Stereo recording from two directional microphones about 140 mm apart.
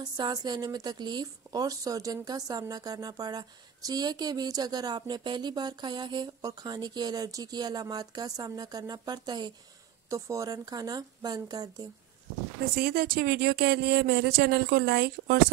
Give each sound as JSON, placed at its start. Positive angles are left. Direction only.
{"t": 0.2, "sound": "speech", "side_deg": -30}
{"t": 12.7, "sound": "speech", "side_deg": -90}